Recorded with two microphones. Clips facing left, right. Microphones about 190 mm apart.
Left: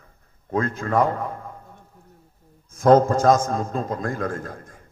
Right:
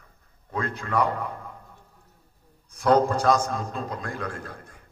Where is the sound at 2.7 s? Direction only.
45° left (ahead or behind).